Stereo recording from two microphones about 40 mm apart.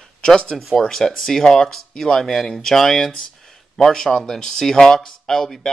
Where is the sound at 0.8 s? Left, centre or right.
Centre.